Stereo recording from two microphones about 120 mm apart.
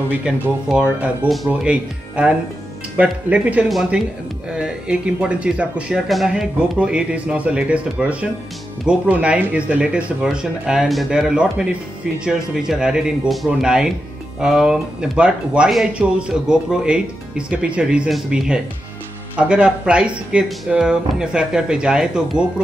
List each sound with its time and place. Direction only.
0.1 s speech: 15° right (ahead or behind)
3.6 s speech: centre (ahead or behind)